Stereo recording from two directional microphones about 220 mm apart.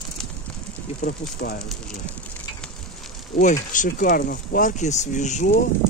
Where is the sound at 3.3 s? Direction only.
35° left (ahead or behind).